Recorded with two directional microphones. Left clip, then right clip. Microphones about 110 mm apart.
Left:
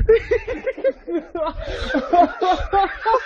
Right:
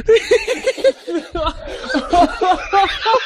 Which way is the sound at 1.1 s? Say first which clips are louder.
Right 3 dB; 15° left (ahead or behind).